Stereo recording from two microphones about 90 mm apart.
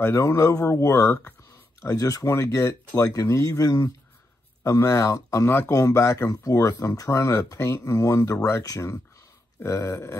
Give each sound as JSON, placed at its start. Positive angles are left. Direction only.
{"t": 0.0, "sound": "speech", "side_deg": 30}